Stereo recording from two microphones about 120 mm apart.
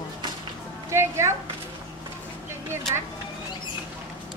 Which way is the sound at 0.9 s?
20° right (ahead or behind).